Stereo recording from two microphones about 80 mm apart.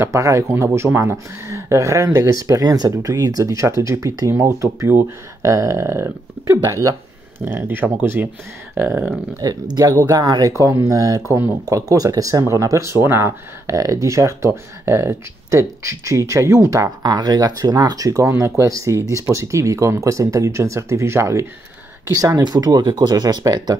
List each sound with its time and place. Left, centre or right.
0.0 s speech: right
7.3 s speech: right
9.4 s speech: right
10.6 s speech: right
13.7 s speech: right
17.0 s speech: right